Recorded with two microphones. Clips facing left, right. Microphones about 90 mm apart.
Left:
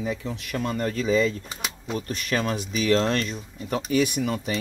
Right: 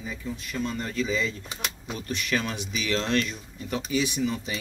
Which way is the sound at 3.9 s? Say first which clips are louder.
Left 3 dB; 55° left (ahead or behind).